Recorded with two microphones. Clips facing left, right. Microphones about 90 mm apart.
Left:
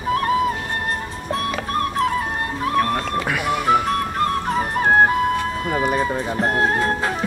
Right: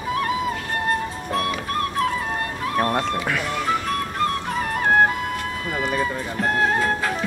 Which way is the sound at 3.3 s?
10° left (ahead or behind).